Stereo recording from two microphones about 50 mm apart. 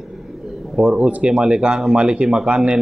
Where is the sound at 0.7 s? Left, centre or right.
Centre.